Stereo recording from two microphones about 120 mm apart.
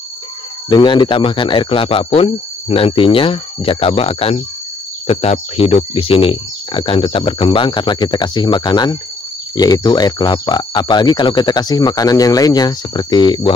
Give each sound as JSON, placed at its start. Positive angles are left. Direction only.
{"t": 0.7, "sound": "speech", "side_deg": 40}